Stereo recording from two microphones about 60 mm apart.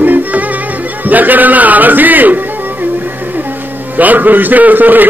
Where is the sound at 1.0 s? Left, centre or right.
Right.